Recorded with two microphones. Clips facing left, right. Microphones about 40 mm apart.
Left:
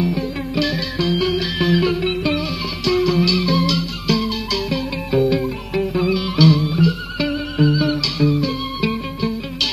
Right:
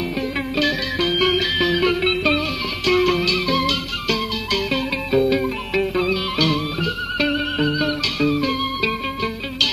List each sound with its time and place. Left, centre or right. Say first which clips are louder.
0.2 s music: even; right
1.6 s music: left 4 dB; right
1.9 s music: right 1 dB; right